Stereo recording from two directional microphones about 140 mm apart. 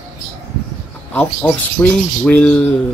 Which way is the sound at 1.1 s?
10° left (ahead or behind).